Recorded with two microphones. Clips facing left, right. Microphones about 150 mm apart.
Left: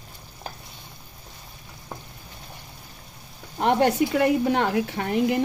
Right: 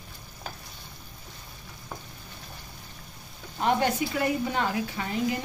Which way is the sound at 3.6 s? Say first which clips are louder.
Left 5 dB; 65° left (ahead or behind).